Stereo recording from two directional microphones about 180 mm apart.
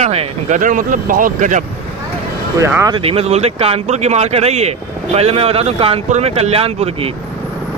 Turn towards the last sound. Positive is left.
turn(degrees=-35)  # may be behind; listen again after turning